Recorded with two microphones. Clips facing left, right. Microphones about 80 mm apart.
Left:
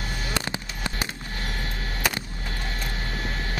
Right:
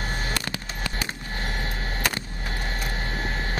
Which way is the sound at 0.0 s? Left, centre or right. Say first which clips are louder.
Right 1 dB; right.